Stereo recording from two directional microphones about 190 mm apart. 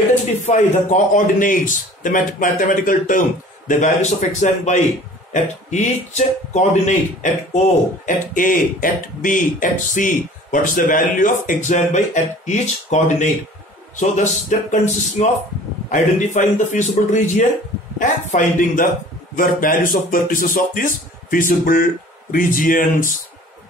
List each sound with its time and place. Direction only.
0.5 s a man's voice: 40° left (ahead or behind)
8.0 s a man's voice: 45° left (ahead or behind)